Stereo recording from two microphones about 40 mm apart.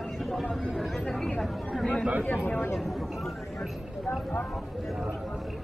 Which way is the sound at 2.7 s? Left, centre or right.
Centre.